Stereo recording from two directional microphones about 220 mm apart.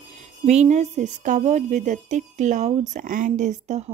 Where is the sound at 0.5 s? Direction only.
30° right (ahead or behind).